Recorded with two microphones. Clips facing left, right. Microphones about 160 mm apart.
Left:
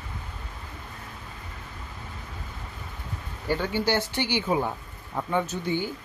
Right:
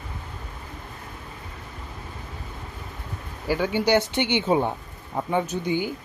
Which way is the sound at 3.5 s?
15° right (ahead or behind).